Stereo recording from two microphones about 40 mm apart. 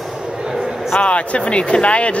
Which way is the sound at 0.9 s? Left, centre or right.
Left.